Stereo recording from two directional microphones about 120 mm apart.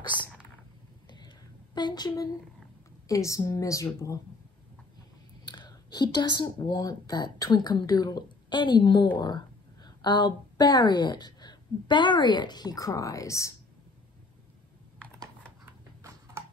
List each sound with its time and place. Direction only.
1.0 s a sound: 35° left (ahead or behind)
1.8 s a woman's voice: 35° left (ahead or behind)
5.5 s a woman's voice: 35° left (ahead or behind)